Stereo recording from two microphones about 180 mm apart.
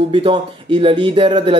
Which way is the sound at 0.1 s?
30° right (ahead or behind).